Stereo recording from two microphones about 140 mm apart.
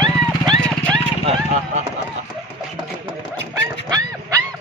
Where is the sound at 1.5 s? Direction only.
60° right (ahead or behind).